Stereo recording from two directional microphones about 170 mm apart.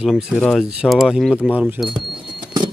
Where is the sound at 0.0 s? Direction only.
5° right (ahead or behind).